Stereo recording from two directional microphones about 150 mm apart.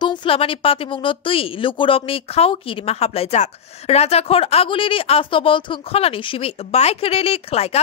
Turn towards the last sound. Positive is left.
turn(degrees=45)  # may be behind; listen again after turning